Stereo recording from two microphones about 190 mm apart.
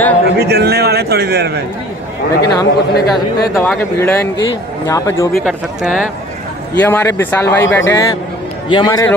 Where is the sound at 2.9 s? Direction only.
55° left (ahead or behind).